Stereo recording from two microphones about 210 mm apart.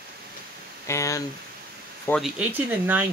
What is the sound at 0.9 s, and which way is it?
Speech, 15° left (ahead or behind).